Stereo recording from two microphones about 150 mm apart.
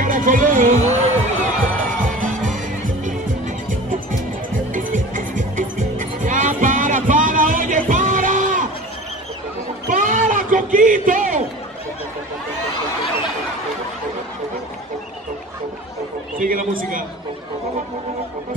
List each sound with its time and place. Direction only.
0.0 s music: 65° right (ahead or behind)
4.7 s music: 60° right (ahead or behind)
9.8 s a sound: 60° right (ahead or behind)
16.3 s a man's voice: 65° right (ahead or behind)